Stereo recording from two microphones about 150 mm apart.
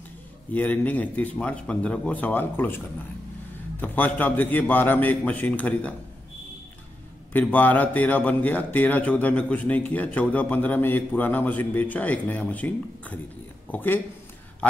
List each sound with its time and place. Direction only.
0.6 s a man's voice: 10° left (ahead or behind)
7.3 s a man's voice: 10° left (ahead or behind)